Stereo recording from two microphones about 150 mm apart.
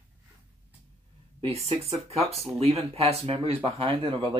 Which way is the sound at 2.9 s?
40° right (ahead or behind).